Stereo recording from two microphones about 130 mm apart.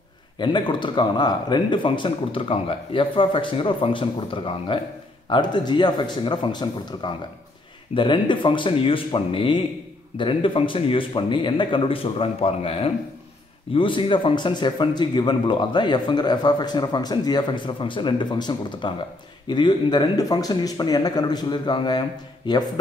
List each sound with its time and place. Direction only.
0.4 s a man's voice: 35° left (ahead or behind)